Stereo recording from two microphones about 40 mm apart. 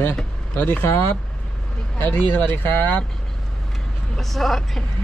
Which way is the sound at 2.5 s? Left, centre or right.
Left.